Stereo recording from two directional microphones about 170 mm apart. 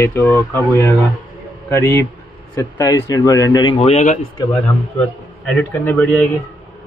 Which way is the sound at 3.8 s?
40° left (ahead or behind).